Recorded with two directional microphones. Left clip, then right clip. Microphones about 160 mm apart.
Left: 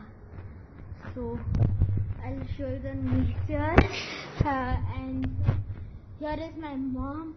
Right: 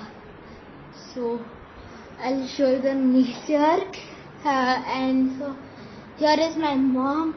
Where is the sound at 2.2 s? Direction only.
15° right (ahead or behind).